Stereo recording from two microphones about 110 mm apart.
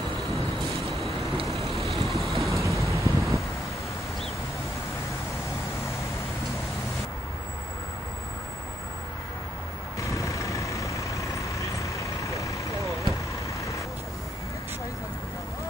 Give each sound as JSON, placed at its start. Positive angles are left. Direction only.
{"t": 1.5, "sound": "vehicle", "side_deg": 0}
{"t": 2.5, "sound": "vehicle", "side_deg": -30}
{"t": 3.0, "sound": "vehicle", "side_deg": 0}
{"t": 9.9, "sound": "vehicle", "side_deg": 30}